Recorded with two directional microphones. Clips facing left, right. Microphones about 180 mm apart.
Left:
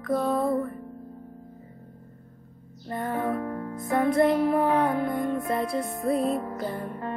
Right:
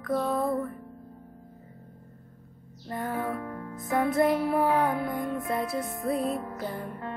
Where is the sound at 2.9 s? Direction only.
Centre (ahead or behind).